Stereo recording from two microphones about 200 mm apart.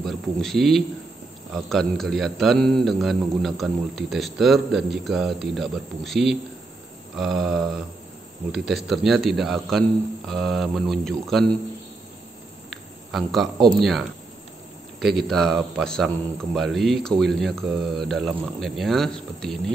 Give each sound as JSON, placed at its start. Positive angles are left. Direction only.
{"t": 0.0, "sound": "a man's voice", "side_deg": 0}
{"t": 12.6, "sound": "a man's voice", "side_deg": 0}